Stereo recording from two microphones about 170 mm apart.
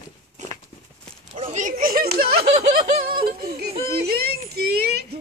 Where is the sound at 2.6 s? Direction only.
60° right (ahead or behind).